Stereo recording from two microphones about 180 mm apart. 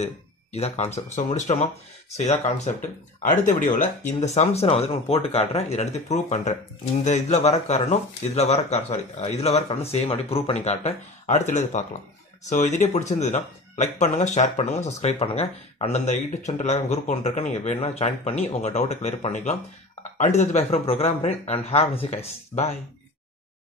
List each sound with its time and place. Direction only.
0.0 s speech: 35° left (ahead or behind)